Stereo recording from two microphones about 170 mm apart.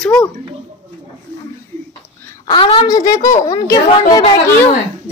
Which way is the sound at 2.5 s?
25° left (ahead or behind).